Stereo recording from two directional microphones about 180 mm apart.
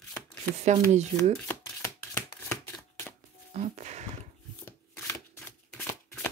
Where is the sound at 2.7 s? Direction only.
10° left (ahead or behind).